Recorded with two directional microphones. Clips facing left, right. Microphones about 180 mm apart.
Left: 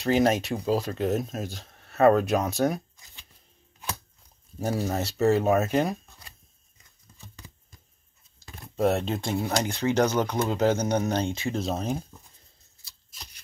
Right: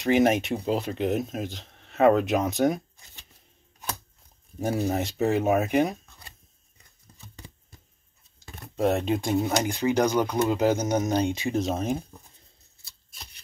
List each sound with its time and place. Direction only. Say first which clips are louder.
0.2 s speech: right 1 dB; 20° right (ahead or behind)
4.6 s speech: right 2 dB; 15° right (ahead or behind)
9.0 s speech: right 4 dB; 15° right (ahead or behind)